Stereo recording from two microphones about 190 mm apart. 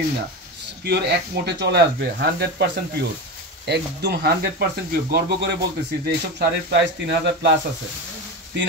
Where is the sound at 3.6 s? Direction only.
60° right (ahead or behind).